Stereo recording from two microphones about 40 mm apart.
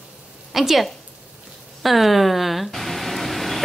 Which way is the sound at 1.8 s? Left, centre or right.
Centre.